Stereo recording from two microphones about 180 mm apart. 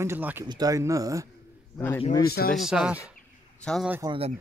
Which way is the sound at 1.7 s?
10° left (ahead or behind).